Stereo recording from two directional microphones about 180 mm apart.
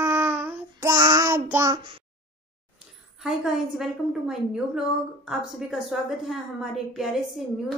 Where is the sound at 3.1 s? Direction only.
Centre (ahead or behind).